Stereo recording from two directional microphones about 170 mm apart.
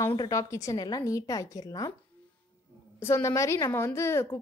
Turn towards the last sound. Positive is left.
turn(degrees=15)  # may be behind; listen again after turning